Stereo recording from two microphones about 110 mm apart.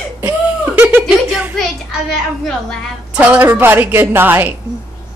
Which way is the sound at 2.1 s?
Centre (ahead or behind).